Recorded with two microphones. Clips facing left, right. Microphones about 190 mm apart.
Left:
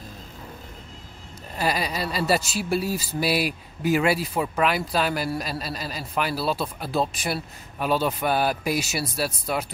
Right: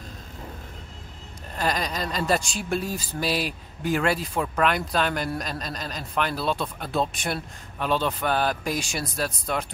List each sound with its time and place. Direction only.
1.6 s speech: 10° left (ahead or behind)